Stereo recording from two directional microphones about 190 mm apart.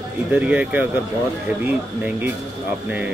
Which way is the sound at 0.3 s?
5° right (ahead or behind).